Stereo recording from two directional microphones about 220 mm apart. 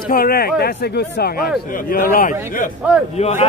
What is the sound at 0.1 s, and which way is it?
A man's voice, 40° left (ahead or behind).